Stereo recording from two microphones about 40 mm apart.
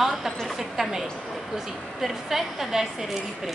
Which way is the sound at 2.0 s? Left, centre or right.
Centre.